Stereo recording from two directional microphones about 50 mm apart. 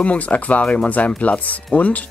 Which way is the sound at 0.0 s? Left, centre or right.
Left.